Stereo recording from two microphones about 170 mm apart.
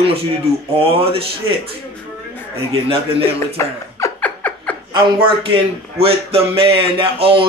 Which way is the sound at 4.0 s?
15° left (ahead or behind).